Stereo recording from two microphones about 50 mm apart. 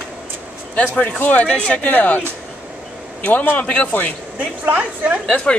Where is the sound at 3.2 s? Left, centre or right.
Left.